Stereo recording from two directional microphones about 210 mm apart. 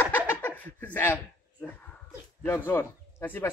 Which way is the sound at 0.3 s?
10° left (ahead or behind).